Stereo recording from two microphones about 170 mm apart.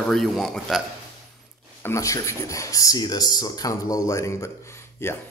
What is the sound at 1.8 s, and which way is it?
Speech, 20° left (ahead or behind).